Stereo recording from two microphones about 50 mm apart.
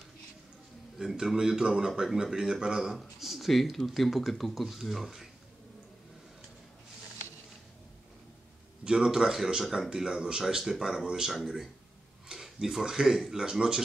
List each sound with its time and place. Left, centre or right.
0.9 s speech: centre
8.8 s speech: centre